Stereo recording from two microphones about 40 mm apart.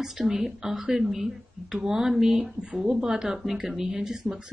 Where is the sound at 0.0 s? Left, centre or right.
Centre.